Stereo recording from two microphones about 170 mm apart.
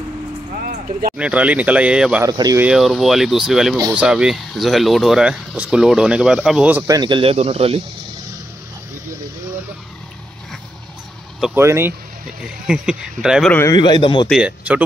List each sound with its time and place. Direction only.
0.6 s a sound: 55° right (ahead or behind)
1.1 s speech: 5° right (ahead or behind)
2.2 s speech: 20° right (ahead or behind)
2.6 s speech: 5° right (ahead or behind)
6.9 s speech: 25° right (ahead or behind)
11.5 s speech: 15° right (ahead or behind)
12.6 s speech: 5° right (ahead or behind)
13.5 s a man's voice: 15° left (ahead or behind)
13.7 s a man's voice: 25° left (ahead or behind)
14.3 s speech: 5° right (ahead or behind)